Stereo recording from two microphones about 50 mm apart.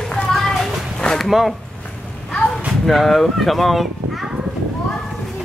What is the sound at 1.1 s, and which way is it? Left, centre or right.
Speech, centre.